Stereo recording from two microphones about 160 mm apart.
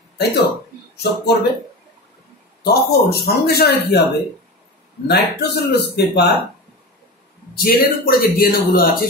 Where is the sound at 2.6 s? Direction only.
80° left.